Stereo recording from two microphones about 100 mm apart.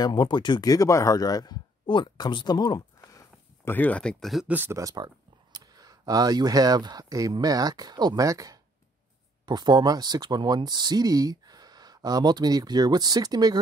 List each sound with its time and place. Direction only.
0.0 s speech: 45° left (ahead or behind)
3.7 s speech: 15° left (ahead or behind)
4.5 s speech: 20° right (ahead or behind)
4.7 s speech: 40° right (ahead or behind)
9.5 s speech: 45° right (ahead or behind)